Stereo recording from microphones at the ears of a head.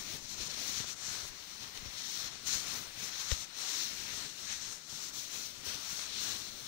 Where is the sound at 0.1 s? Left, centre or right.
Left.